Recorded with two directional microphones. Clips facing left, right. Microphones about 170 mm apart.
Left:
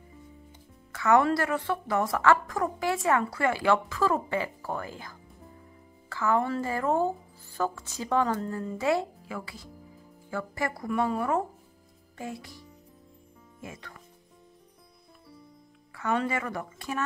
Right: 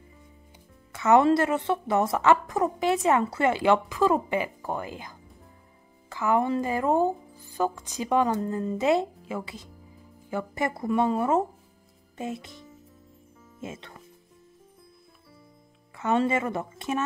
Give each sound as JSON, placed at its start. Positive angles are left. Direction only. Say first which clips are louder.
{"t": 0.9, "sound": "a woman's voice", "louder": "right 3 dB", "side_deg": -20}
{"t": 15.9, "sound": "a woman's voice", "louder": "right 4 dB", "side_deg": -20}